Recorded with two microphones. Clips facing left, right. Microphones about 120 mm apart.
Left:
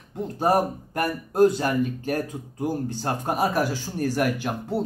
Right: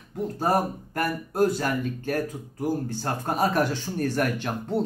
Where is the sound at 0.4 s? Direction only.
15° left (ahead or behind).